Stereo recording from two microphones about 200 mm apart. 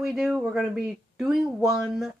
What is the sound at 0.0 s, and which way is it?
Speech, centre (ahead or behind).